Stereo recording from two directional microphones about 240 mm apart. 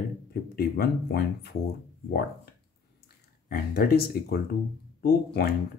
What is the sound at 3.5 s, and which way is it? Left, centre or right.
Speech, left.